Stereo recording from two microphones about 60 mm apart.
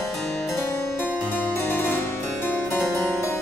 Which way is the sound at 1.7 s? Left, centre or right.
Left.